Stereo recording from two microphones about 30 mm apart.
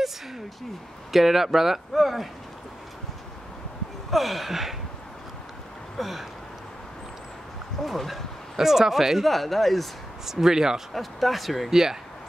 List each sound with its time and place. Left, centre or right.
1.1 s speech: centre
4.1 s speech: centre
5.9 s a sound: centre
7.8 s speech: centre
8.5 s speech: centre
9.2 s speech: centre
10.2 s speech: centre
10.9 s speech: centre
11.7 s speech: centre